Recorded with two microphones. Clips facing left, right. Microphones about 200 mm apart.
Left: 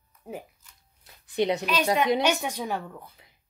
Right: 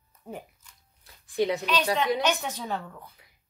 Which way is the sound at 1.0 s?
20° left (ahead or behind).